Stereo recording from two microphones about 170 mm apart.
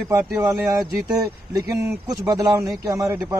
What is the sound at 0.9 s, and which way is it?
Speech, 20° right (ahead or behind).